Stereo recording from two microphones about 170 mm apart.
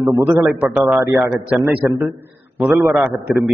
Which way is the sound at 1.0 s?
20° right (ahead or behind).